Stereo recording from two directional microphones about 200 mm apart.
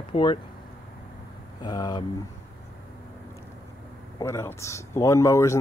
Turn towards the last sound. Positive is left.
turn(degrees=15)  # may be behind; listen again after turning